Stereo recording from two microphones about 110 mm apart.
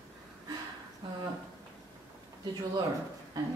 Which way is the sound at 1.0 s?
50° right (ahead or behind).